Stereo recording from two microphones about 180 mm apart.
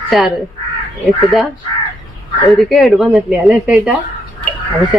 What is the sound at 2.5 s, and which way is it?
Speech, centre (ahead or behind).